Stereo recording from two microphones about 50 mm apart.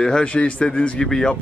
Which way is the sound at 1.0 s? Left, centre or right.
Centre.